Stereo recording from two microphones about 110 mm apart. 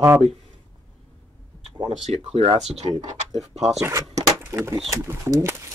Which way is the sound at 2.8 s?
50° right (ahead or behind).